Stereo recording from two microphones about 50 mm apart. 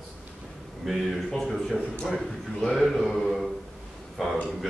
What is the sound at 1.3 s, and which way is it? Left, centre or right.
A man's voice, centre.